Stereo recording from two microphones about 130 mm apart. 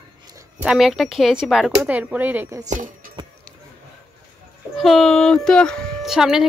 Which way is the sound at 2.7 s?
80° right.